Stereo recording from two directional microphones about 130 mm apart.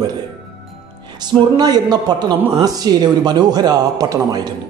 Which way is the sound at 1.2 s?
30° right (ahead or behind).